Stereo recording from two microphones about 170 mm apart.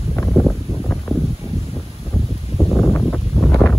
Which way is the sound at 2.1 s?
Centre (ahead or behind).